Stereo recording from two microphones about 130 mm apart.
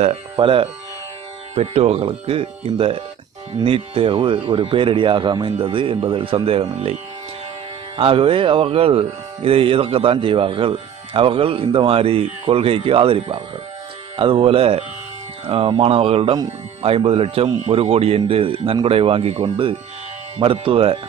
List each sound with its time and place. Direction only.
0.0 s speech: 50° right (ahead or behind)
8.0 s speech: 45° right (ahead or behind)